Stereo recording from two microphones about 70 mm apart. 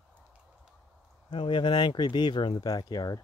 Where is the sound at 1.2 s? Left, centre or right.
Left.